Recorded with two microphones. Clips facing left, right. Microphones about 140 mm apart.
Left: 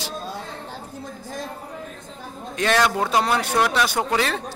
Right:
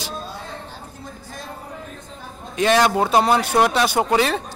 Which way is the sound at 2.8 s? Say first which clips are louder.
Right 4 dB; 25° right (ahead or behind).